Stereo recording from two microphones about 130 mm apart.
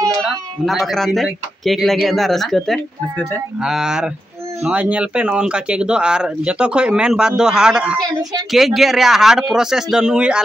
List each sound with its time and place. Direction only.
0.7 s speech: centre (ahead or behind)